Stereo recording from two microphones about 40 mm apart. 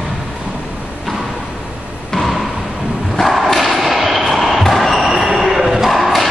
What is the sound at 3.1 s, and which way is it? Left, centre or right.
Thump, centre.